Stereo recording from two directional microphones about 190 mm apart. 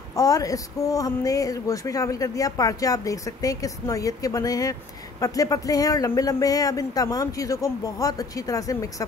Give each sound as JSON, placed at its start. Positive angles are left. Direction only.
{"t": 0.1, "sound": "speech", "side_deg": 20}